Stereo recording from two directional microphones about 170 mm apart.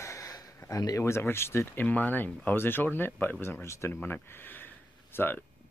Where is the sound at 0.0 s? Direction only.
20° left (ahead or behind).